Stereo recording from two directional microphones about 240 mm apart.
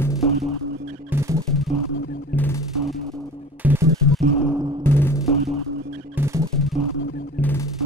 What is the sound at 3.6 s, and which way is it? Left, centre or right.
Music, centre.